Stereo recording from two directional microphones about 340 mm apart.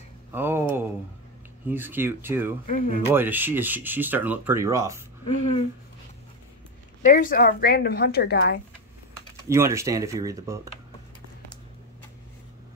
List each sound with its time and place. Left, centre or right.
0.3 s a sound: centre
1.7 s speech: centre
2.6 s a woman's voice: left
3.1 s speech: centre
7.0 s a woman's voice: left
9.5 s speech: centre